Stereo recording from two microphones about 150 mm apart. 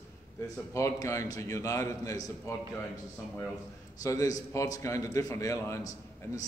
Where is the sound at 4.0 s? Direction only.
25° left (ahead or behind).